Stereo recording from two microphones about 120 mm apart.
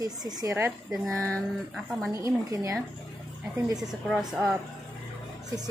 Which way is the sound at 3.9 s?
5° right (ahead or behind).